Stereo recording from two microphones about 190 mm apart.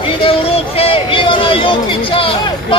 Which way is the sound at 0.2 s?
30° left (ahead or behind).